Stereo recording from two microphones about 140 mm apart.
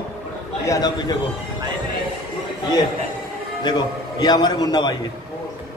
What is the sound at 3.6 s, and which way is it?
A man's voice, 30° left (ahead or behind).